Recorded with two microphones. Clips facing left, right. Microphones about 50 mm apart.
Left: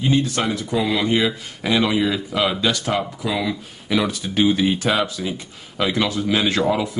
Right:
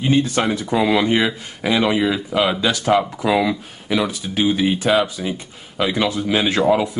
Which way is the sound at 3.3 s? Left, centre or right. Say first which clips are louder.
Right 6 dB; right.